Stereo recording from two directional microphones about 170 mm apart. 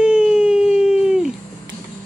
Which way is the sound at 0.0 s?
5° right (ahead or behind).